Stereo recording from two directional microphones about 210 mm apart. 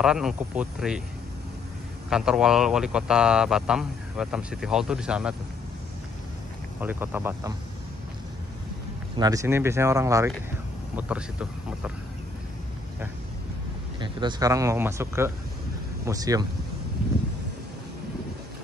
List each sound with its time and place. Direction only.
0.0 s speech: 5° right (ahead or behind)
2.0 s speech: 5° right (ahead or behind)
6.8 s speech: 5° right (ahead or behind)
9.1 s speech: 15° right (ahead or behind)
13.9 s speech: 20° right (ahead or behind)